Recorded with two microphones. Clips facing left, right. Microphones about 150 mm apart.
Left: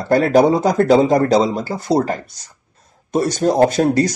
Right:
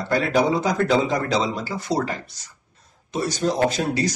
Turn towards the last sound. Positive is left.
turn(degrees=50)  # may be behind; listen again after turning